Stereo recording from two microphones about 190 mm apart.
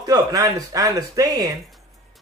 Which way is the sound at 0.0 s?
20° right (ahead or behind).